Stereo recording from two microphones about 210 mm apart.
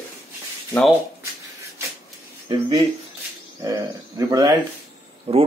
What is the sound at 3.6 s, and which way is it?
Speech, 15° right (ahead or behind).